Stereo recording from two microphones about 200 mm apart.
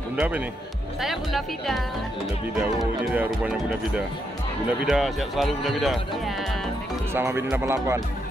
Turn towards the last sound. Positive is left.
turn(degrees=-15)  # may be behind; listen again after turning